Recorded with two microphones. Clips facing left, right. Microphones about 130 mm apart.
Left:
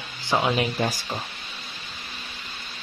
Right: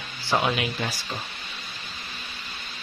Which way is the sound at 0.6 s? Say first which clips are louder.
Left 5 dB; 40° left (ahead or behind).